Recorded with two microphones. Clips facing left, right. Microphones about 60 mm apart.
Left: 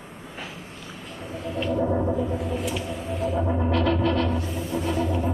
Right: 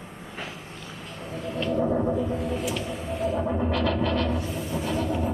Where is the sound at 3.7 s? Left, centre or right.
Left.